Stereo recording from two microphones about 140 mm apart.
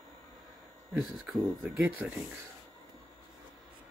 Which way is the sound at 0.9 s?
Centre (ahead or behind).